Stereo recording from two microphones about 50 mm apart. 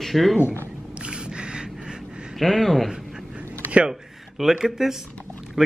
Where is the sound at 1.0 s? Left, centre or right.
Centre.